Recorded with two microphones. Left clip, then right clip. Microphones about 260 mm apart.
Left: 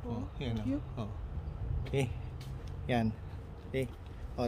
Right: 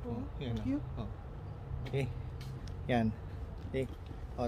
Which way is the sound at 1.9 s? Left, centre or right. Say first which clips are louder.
Left 3 dB; left.